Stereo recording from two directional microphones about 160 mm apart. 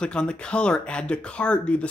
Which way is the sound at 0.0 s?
5° left (ahead or behind).